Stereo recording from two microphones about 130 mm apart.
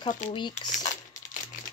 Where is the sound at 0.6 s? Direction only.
70° left (ahead or behind).